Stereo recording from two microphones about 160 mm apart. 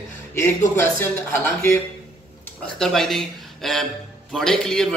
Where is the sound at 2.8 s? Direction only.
Centre (ahead or behind).